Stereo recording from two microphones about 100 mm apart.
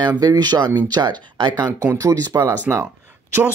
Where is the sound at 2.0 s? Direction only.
35° right (ahead or behind).